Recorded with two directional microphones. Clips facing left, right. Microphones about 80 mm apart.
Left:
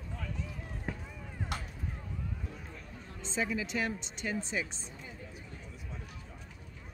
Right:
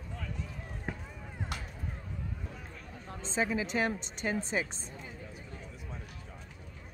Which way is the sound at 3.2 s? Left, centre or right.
Right.